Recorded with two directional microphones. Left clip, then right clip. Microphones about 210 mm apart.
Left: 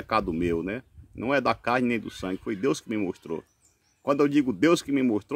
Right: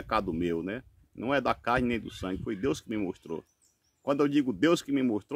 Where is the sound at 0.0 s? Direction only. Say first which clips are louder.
Left 4 dB; 5° right (ahead or behind).